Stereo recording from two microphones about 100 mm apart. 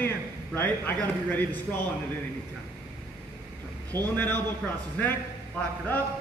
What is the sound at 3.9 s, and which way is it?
Speech, 25° left (ahead or behind).